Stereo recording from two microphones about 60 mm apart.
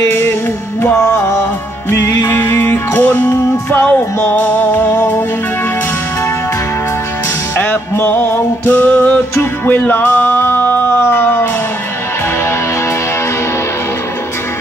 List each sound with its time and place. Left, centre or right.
0.8 s music: left
2.2 s music: left
7.5 s music: left
9.7 s a sound: left